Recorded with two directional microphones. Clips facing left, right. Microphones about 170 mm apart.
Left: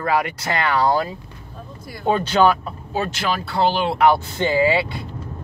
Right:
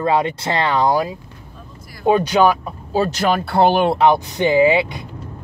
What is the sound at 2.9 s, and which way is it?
Speech, 35° right (ahead or behind).